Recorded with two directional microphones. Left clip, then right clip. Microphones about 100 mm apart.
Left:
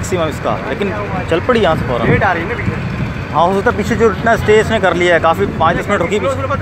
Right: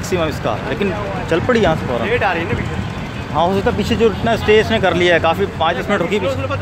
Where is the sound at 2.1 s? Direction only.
10° left (ahead or behind).